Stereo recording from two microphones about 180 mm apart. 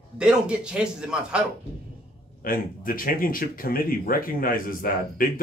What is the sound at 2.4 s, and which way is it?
Speech, 50° left (ahead or behind).